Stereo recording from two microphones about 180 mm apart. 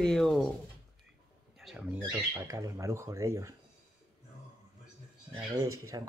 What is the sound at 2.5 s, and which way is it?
A man's voice, 20° right (ahead or behind).